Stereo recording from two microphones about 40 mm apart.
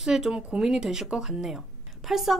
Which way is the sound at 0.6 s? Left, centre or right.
Centre.